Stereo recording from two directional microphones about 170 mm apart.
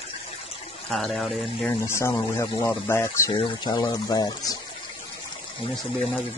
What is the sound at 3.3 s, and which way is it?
Speech, 25° left (ahead or behind).